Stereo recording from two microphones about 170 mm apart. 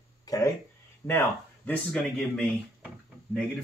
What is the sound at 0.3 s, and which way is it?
Speech, 20° left (ahead or behind).